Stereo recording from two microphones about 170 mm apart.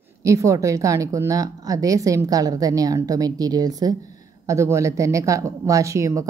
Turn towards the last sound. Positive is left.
turn(degrees=-20)  # may be behind; listen again after turning